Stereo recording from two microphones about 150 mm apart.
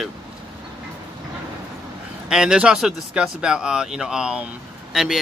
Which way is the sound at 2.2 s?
5° right (ahead or behind).